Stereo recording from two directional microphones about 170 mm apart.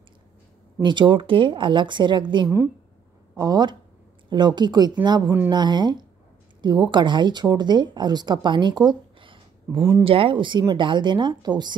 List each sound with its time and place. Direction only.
0.8 s speech: 30° right (ahead or behind)